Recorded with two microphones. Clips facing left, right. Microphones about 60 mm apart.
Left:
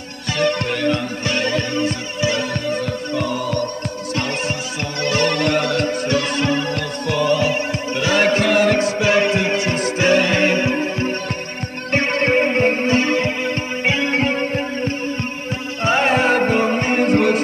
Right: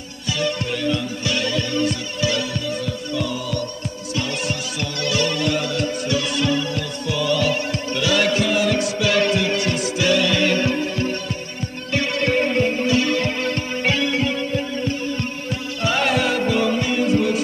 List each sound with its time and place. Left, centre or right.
0.3 s music: left
5.0 s music: left
7.3 s music: left
14.1 s music: left